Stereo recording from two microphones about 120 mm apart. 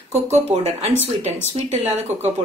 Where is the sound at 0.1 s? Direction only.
20° right (ahead or behind).